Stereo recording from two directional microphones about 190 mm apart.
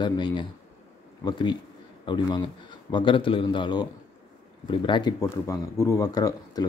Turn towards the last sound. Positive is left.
turn(degrees=20)  # may be behind; listen again after turning